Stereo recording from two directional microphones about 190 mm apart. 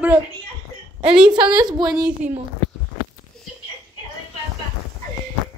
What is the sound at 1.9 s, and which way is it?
Speech, 5° right (ahead or behind).